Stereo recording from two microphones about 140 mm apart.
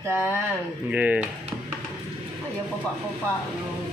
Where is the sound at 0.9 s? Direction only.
10° right (ahead or behind).